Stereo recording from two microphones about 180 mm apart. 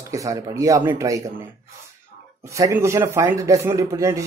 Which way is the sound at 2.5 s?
15° right (ahead or behind).